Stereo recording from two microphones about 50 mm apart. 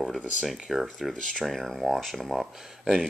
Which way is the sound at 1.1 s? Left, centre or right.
Centre.